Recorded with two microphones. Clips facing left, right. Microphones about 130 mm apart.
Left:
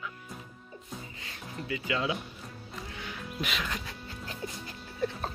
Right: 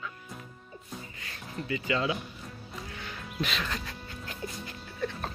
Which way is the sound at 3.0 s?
10° left (ahead or behind).